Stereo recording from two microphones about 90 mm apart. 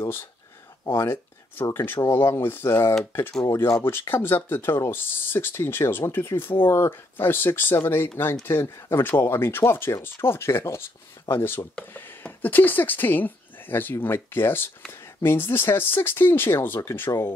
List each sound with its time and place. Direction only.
0.0 s speech: 25° left (ahead or behind)